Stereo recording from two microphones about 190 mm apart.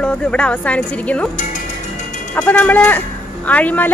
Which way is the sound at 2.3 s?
5° left (ahead or behind).